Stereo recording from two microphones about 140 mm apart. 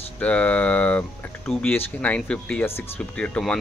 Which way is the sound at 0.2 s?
10° left (ahead or behind).